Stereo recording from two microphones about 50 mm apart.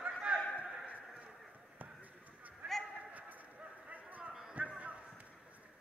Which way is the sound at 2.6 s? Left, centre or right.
Right.